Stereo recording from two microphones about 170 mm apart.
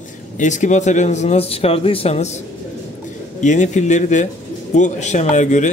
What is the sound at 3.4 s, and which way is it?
Speech, 45° left (ahead or behind).